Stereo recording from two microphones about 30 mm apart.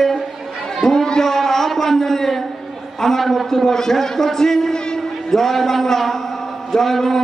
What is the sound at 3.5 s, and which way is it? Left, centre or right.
A man's voice, centre.